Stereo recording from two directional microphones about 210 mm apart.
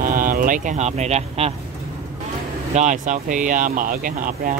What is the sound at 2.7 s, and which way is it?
Speech, 35° right (ahead or behind).